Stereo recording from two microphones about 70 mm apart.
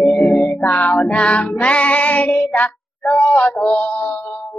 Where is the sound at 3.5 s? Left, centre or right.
Centre.